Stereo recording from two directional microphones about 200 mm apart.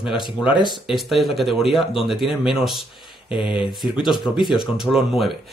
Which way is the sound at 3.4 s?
25° left (ahead or behind).